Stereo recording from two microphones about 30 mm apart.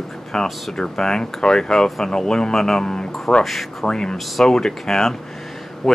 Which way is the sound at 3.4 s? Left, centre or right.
Centre.